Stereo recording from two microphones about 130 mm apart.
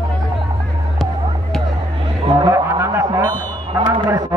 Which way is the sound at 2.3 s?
25° right (ahead or behind).